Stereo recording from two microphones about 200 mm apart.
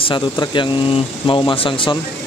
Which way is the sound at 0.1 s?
25° left (ahead or behind).